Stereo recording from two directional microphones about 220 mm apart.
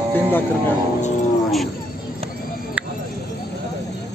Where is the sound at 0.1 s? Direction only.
10° left (ahead or behind).